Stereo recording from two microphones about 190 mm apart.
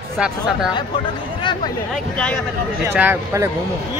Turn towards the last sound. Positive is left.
turn(degrees=-15)  # may be behind; listen again after turning